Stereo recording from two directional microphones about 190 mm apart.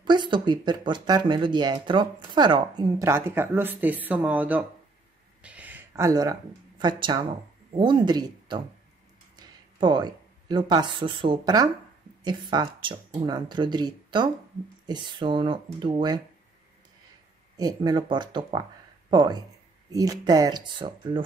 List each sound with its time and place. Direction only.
0.0 s speech: 25° right (ahead or behind); by 4.6 s 5° right (ahead or behind)
5.4 s a sound: 10° right (ahead or behind)
6.8 s speech: 25° right (ahead or behind)
17.6 s speech: 20° right (ahead or behind)